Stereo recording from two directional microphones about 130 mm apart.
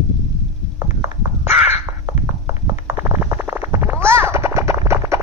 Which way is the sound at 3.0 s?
20° right (ahead or behind).